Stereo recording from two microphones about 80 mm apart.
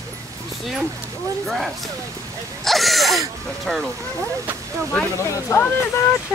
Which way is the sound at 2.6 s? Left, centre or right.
Centre.